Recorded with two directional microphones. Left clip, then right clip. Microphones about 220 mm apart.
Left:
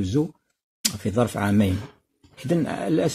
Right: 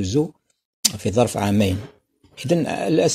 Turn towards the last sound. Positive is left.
turn(degrees=10)  # may be behind; listen again after turning